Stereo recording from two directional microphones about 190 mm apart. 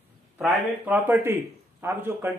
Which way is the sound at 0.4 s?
5° right (ahead or behind).